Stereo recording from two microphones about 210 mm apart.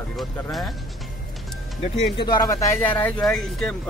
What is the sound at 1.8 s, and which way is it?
Speech, 20° left (ahead or behind).